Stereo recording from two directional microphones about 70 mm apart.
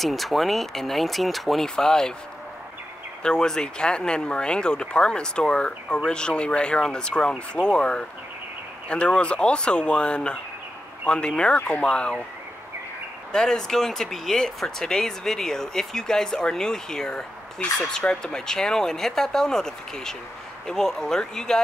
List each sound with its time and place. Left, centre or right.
0.0 s speech: centre
3.2 s speech: centre
13.3 s speech: centre